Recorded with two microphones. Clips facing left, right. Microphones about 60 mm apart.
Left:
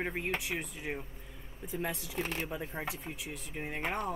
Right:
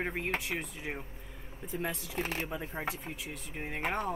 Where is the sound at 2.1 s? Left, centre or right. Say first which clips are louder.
Right 1 dB; centre.